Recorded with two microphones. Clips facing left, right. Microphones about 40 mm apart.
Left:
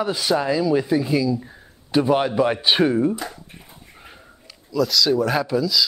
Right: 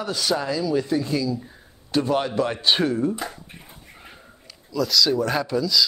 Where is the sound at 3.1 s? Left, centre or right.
Centre.